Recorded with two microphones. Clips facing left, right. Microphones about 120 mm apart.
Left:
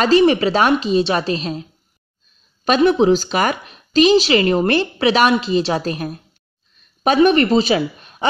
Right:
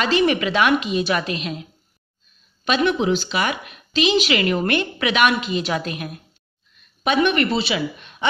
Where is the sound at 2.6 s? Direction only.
40° left (ahead or behind).